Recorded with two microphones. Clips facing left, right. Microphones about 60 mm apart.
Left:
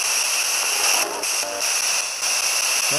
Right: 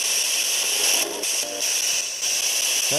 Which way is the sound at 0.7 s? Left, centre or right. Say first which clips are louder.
Left 4 dB; left.